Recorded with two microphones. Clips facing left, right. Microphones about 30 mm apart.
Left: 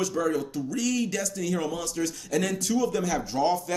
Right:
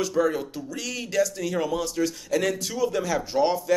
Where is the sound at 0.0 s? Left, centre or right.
Centre.